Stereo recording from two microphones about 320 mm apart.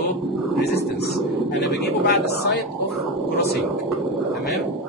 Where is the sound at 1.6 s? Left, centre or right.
Left.